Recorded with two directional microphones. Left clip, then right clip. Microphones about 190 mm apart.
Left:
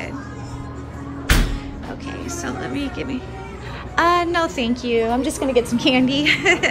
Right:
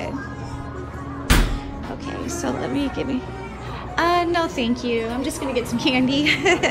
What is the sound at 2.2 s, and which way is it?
A woman's voice, 20° right (ahead or behind).